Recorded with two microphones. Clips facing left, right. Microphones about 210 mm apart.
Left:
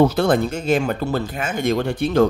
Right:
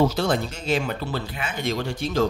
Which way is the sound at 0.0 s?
55° left (ahead or behind).